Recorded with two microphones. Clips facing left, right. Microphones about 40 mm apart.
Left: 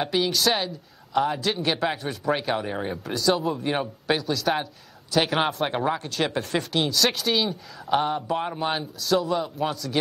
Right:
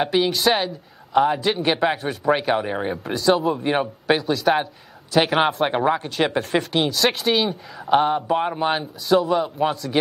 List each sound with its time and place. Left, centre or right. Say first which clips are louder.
0.0 s speech: right 4 dB; centre